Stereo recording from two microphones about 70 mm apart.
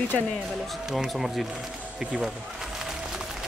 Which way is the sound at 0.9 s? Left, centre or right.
Centre.